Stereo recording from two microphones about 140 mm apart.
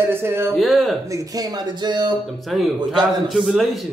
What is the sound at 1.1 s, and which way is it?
Speech, 25° right (ahead or behind).